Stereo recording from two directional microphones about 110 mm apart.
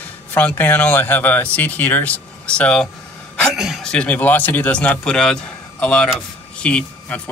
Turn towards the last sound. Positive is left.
turn(degrees=10)  # may be behind; listen again after turning